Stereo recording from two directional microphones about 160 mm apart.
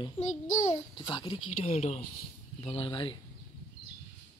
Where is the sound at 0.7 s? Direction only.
30° left (ahead or behind).